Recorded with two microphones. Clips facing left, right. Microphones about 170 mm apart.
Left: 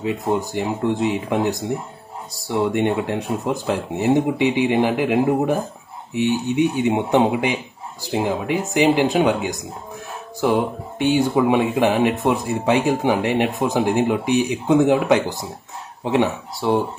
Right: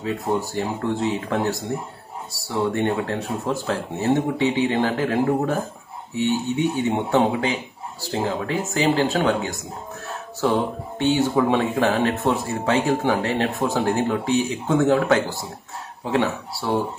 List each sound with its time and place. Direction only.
0.0 s speech: 15° left (ahead or behind)